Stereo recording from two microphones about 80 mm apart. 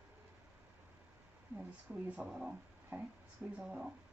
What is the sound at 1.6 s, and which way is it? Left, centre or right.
Speech, centre.